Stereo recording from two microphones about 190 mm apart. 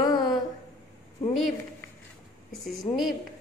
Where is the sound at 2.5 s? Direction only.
Centre (ahead or behind).